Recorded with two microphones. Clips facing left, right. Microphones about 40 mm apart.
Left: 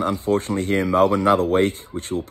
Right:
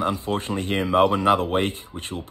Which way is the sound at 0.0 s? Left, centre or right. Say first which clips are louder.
Left 4 dB; right.